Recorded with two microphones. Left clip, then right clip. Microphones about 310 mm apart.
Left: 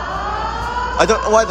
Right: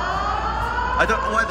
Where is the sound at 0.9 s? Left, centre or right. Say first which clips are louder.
Left 7 dB; centre.